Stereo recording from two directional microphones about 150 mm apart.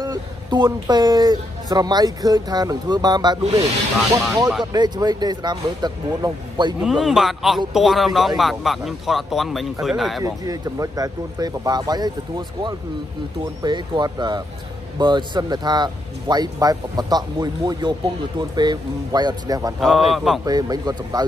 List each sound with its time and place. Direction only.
0.0 s a sound: 30° right (ahead or behind)
0.8 s speech: 25° right (ahead or behind)
4.7 s speech: 30° right (ahead or behind)
6.8 s speech: centre (ahead or behind)
10.2 s speech: 25° right (ahead or behind)
19.8 s speech: centre (ahead or behind)
20.4 s speech: 25° right (ahead or behind)